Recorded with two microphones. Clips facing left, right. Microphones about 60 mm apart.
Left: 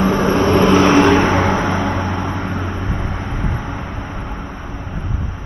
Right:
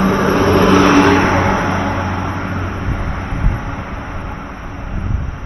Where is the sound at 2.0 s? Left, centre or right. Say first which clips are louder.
Right 1 dB; centre.